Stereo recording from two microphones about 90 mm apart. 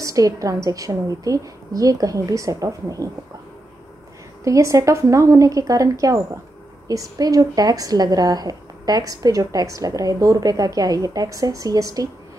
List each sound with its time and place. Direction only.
0.0 s a woman's voice: 40° right (ahead or behind)
4.5 s a woman's voice: 35° right (ahead or behind)